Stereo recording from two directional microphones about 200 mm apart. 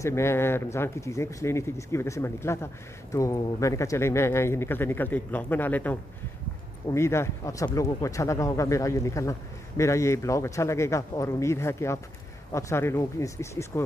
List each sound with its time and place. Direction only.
0.0 s speech: 15° left (ahead or behind)